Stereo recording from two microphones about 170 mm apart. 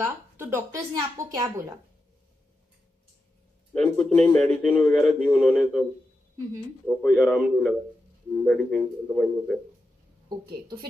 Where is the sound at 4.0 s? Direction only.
15° left (ahead or behind).